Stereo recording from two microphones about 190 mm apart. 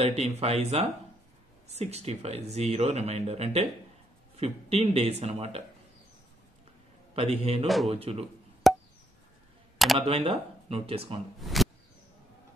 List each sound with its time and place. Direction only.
0.0 s speech: 35° right (ahead or behind)
7.2 s speech: 35° right (ahead or behind)
7.6 s speech: centre (ahead or behind)
7.9 s speech: 30° right (ahead or behind)
8.6 s chop: centre (ahead or behind)
9.9 s speech: 30° right (ahead or behind)
11.4 s a sound: centre (ahead or behind)